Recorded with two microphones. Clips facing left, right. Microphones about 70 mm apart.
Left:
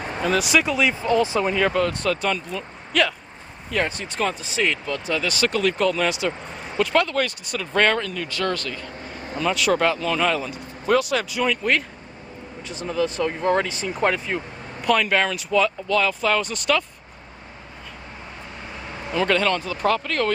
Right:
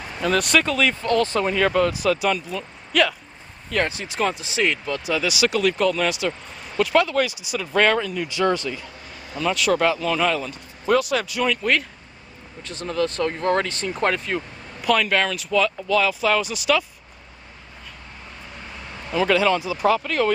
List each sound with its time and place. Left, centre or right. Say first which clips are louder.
0.2 s speech: right 1 dB; centre
9.1 s vehicle: left 3 dB; left
9.4 s speech: even; centre
19.1 s speech: right 2 dB; centre